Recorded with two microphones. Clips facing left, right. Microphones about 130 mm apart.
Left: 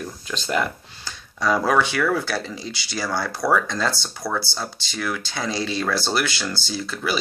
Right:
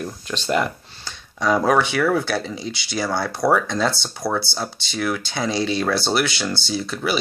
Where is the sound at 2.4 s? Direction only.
Centre (ahead or behind).